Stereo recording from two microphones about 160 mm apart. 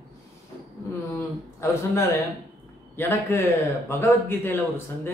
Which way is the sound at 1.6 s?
15° left (ahead or behind).